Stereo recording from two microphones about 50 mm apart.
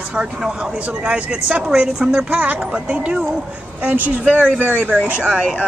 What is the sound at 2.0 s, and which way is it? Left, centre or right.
Speech, centre.